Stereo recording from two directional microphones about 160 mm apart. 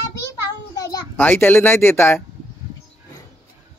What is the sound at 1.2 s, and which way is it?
Speech, 10° left (ahead or behind).